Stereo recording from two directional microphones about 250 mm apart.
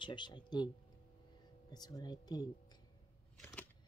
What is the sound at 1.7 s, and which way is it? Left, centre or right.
Speech, centre.